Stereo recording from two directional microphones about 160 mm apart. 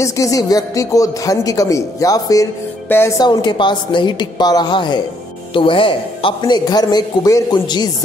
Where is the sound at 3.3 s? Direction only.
30° left (ahead or behind).